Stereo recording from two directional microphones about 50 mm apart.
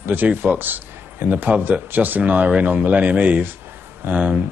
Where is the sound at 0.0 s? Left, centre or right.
Right.